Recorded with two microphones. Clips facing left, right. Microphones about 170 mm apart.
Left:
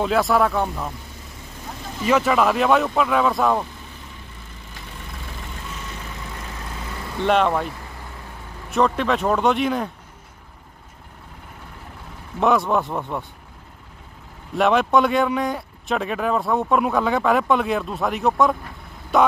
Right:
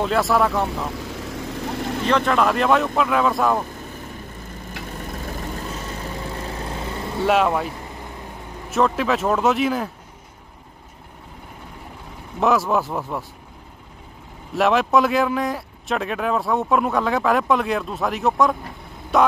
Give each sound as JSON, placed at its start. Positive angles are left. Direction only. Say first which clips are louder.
{"t": 0.0, "sound": "speech", "louder": "even", "side_deg": 0}
{"t": 0.7, "sound": "vehicle", "louder": "right 3 dB", "side_deg": -85}
{"t": 2.0, "sound": "speech", "louder": "left 1 dB", "side_deg": 5}
{"t": 4.8, "sound": "vehicle", "louder": "right 6 dB", "side_deg": -45}
{"t": 7.2, "sound": "speech", "louder": "even", "side_deg": -5}
{"t": 12.4, "sound": "speech", "louder": "even", "side_deg": 0}
{"t": 14.5, "sound": "speech", "louder": "even", "side_deg": 0}